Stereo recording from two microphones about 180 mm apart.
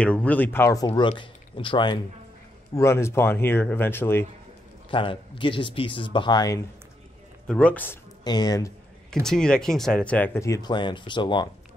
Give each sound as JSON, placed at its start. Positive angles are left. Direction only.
{"t": 0.0, "sound": "speech", "side_deg": 5}
{"t": 0.8, "sound": "speech", "side_deg": 25}
{"t": 2.7, "sound": "speech", "side_deg": 15}
{"t": 4.9, "sound": "speech", "side_deg": 30}
{"t": 7.4, "sound": "speech", "side_deg": 5}
{"t": 8.2, "sound": "speech", "side_deg": 20}
{"t": 9.2, "sound": "speech", "side_deg": 5}